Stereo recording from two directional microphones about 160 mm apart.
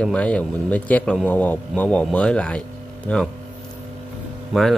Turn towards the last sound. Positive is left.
turn(degrees=0)  # may be behind; listen again after turning